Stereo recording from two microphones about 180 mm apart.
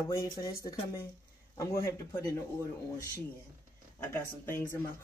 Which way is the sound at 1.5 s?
15° left (ahead or behind).